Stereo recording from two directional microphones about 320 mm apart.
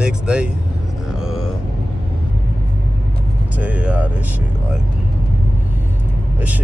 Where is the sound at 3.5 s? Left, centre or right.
Centre.